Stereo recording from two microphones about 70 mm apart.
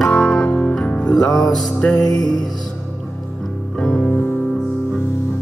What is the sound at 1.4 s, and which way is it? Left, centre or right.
Music, centre.